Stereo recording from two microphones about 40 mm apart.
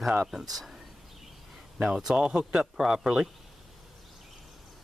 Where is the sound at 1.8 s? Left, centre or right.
Centre.